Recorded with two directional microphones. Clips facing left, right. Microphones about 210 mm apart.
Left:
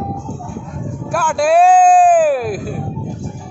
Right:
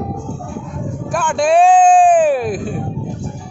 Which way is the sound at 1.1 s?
5° left (ahead or behind).